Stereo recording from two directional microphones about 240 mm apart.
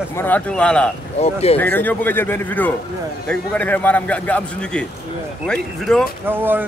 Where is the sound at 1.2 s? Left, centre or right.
Left.